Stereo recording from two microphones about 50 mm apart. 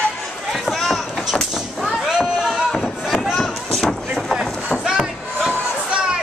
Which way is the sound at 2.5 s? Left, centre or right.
Centre.